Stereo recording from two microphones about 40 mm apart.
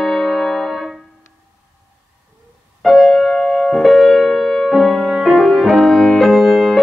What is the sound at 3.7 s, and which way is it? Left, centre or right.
Music, centre.